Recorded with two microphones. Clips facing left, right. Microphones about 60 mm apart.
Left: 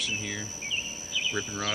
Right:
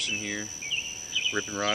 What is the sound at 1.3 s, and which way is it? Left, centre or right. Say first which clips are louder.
Cricket: right 6 dB; centre.